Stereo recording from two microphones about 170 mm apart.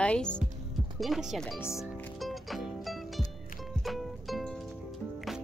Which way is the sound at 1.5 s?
15° left (ahead or behind).